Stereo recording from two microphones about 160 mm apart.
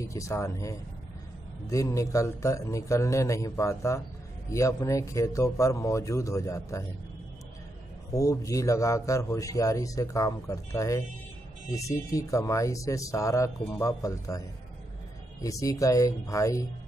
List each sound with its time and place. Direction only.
0.0 s a man's voice: 20° left (ahead or behind)
8.1 s a man's voice: 20° left (ahead or behind)
15.4 s a man's voice: 20° left (ahead or behind)